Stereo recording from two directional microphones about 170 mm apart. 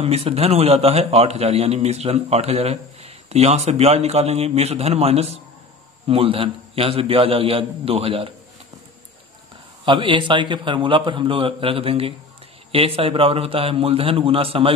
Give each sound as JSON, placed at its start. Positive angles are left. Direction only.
{"t": 0.0, "sound": "a man's voice", "side_deg": -35}
{"t": 9.8, "sound": "a man's voice", "side_deg": -30}